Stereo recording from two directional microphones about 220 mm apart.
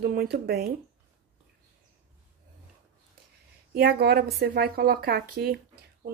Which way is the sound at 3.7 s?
45° right (ahead or behind).